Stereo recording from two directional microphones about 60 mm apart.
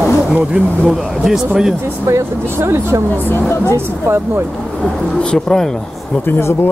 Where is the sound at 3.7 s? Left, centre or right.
Right.